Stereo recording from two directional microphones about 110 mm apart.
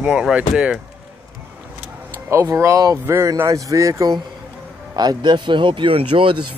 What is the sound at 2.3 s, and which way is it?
Speech, 25° right (ahead or behind).